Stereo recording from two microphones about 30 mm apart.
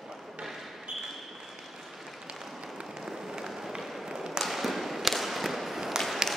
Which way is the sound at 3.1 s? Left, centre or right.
Right.